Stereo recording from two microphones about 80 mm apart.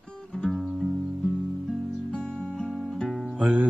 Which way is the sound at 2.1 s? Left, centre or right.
Centre.